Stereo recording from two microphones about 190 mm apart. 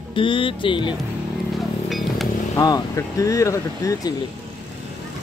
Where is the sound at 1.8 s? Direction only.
Centre (ahead or behind).